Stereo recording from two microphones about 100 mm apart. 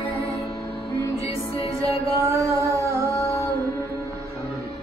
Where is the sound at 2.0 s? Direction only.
30° right (ahead or behind).